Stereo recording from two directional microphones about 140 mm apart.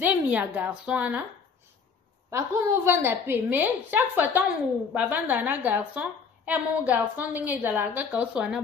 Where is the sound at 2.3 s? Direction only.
20° right (ahead or behind).